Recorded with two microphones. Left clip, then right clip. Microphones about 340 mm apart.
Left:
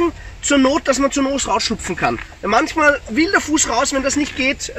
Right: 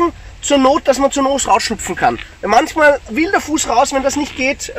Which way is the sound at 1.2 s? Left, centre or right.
Centre.